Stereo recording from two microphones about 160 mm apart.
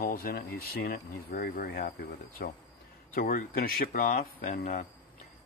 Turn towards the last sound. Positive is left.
turn(degrees=55)  # may be behind; listen again after turning